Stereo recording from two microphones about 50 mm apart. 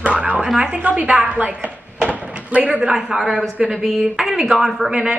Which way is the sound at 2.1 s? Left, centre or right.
Right.